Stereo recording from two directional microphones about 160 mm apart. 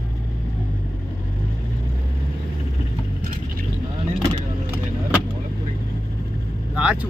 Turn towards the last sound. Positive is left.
turn(degrees=-5)  # may be behind; listen again after turning